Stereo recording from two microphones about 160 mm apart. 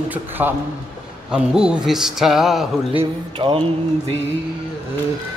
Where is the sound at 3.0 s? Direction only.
35° right (ahead or behind).